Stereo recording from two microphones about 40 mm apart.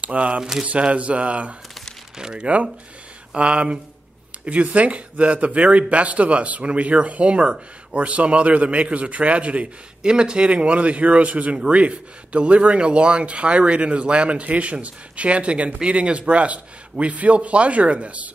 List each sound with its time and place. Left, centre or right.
0.0 s speech: right
0.4 s a sound: centre
0.7 s speech: right
2.1 s speech: centre
2.4 s speech: right